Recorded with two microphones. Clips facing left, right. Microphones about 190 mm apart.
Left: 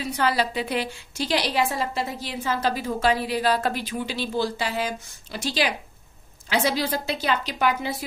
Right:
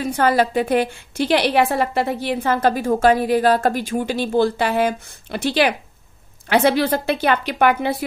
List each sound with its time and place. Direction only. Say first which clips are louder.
0.0 s a woman's voice: right 6 dB; 50° right (ahead or behind)